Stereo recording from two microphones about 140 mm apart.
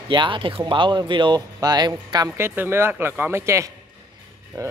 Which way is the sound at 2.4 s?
15° right (ahead or behind).